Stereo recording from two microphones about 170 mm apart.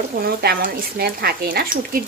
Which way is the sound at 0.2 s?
65° right (ahead or behind).